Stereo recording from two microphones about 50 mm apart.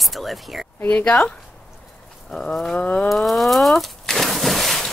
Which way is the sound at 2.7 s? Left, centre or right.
Left.